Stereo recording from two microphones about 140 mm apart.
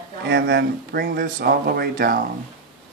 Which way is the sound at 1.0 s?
90° right.